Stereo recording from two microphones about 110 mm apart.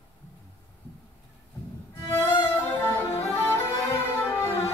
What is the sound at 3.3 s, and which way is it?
Music, 25° left (ahead or behind).